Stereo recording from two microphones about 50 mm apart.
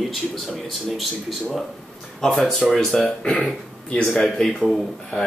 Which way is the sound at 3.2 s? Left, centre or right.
Left.